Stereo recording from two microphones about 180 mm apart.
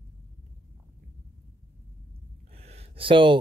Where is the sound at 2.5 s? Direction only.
35° right (ahead or behind).